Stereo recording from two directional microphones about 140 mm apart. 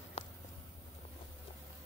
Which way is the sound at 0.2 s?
45° left (ahead or behind).